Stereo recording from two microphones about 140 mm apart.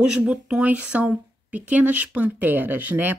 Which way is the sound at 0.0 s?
5° right (ahead or behind).